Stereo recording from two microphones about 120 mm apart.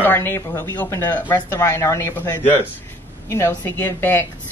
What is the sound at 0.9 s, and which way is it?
Speech, 35° left (ahead or behind).